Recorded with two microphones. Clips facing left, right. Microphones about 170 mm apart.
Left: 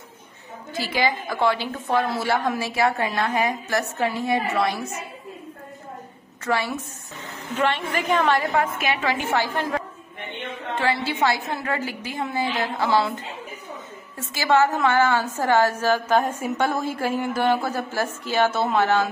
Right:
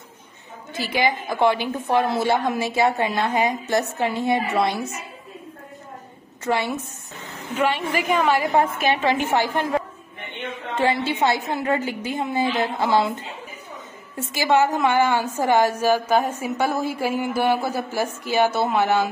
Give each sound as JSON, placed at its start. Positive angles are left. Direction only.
{"t": 0.7, "sound": "a woman's voice", "side_deg": -20}
{"t": 6.4, "sound": "a woman's voice", "side_deg": -20}
{"t": 7.5, "sound": "a woman's voice", "side_deg": -10}
{"t": 8.5, "sound": "a woman's voice", "side_deg": -25}
{"t": 10.8, "sound": "a woman's voice", "side_deg": -20}
{"t": 14.1, "sound": "a woman's voice", "side_deg": -15}